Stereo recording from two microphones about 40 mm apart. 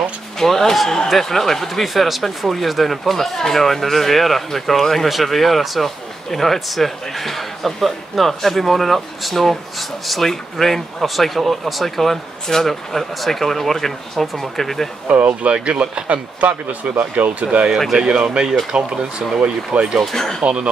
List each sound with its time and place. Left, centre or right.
0.4 s a man's voice: centre
15.0 s speech: right
17.1 s speech: right
17.9 s speech: centre
20.0 s speech: centre
20.4 s speech: right